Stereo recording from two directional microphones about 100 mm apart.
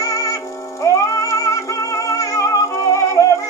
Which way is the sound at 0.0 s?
30° left (ahead or behind).